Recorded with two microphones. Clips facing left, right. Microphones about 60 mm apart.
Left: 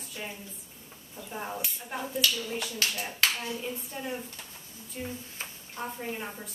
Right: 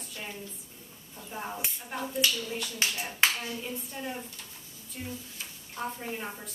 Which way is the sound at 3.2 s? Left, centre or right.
Right.